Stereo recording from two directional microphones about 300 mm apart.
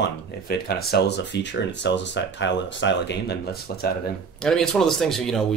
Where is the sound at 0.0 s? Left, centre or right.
Left.